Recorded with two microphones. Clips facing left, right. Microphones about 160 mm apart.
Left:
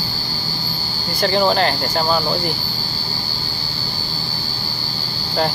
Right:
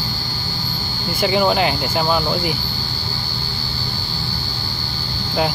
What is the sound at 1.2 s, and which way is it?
Speech, 5° right (ahead or behind).